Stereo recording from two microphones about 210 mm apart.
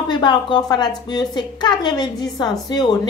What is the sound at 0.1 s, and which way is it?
A woman's voice, 20° left (ahead or behind).